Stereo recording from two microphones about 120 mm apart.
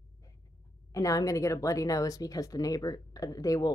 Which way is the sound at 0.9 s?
30° left (ahead or behind).